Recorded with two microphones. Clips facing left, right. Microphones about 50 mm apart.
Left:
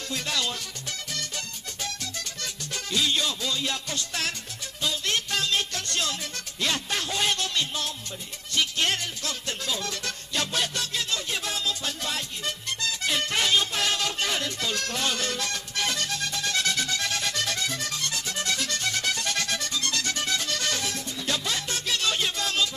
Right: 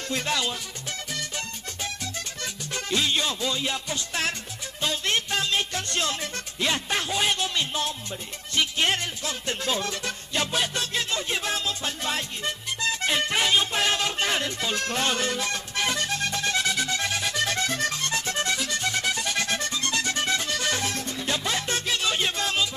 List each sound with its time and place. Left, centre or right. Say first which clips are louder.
0.1 s music: right 3 dB; right
13.3 s music: even; centre
15.1 s music: right 3 dB; centre
16.5 s music: right 1 dB; centre
17.5 s music: right 4 dB; right
18.6 s music: right 2 dB; centre
19.4 s music: right 2 dB; right
20.5 s music: right 2 dB; centre
21.3 s music: right 2 dB; right
21.9 s music: left 1 dB; centre